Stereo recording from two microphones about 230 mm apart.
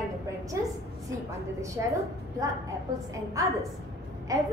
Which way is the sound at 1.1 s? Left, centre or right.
Centre.